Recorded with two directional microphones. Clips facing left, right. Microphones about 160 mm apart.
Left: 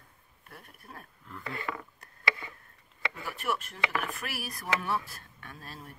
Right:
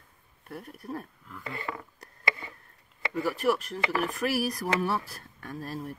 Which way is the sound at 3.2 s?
40° right (ahead or behind).